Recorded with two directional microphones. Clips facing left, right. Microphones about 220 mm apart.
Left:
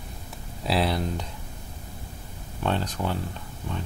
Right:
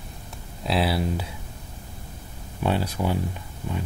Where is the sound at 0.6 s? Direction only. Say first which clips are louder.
Right 1 dB; 5° right (ahead or behind).